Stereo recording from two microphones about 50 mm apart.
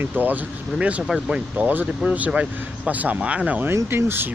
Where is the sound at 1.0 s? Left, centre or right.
Centre.